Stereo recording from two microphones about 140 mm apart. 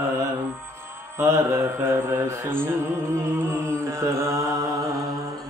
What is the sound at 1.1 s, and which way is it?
Mantra, 20° right (ahead or behind).